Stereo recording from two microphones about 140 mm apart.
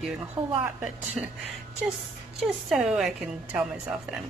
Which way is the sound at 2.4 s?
5° right (ahead or behind).